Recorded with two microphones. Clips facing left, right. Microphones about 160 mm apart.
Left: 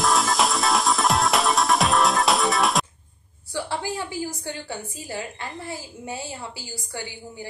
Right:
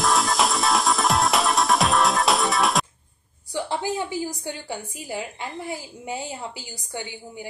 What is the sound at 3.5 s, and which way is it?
A woman's voice, 20° right (ahead or behind).